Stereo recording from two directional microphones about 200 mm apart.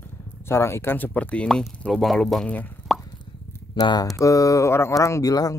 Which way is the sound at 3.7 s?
20° left (ahead or behind).